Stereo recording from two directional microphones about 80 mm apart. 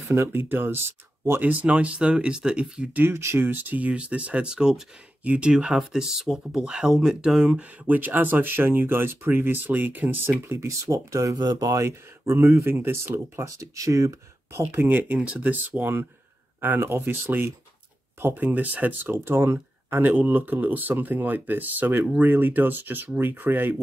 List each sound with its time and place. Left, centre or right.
0.1 s speech: right
1.4 s speech: centre
3.0 s speech: right; by 7.5 s centre
7.5 s speech: right
11.8 s speech: right
13.5 s speech: right
14.8 s speech: right